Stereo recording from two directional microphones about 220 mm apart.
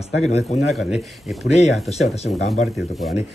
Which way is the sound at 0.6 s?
Centre (ahead or behind).